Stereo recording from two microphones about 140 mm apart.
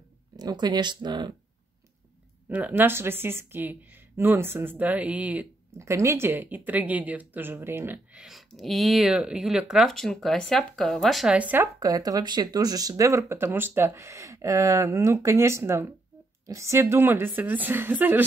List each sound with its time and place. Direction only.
0.4 s speech: 30° right (ahead or behind)
2.5 s a woman's voice: 10° right (ahead or behind)
5.8 s a woman's voice: 20° right (ahead or behind)
11.8 s a woman's voice: 25° right (ahead or behind)